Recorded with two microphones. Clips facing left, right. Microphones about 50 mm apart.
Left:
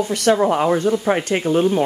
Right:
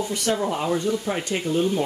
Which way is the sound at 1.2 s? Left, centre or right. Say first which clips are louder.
Left 6 dB; left.